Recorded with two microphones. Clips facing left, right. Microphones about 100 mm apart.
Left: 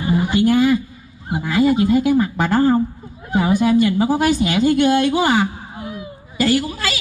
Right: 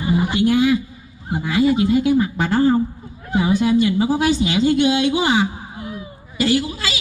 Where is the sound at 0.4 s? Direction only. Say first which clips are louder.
Left 2 dB; 50° left (ahead or behind).